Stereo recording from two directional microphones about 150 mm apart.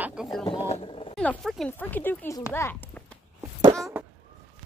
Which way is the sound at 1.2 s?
5° left (ahead or behind).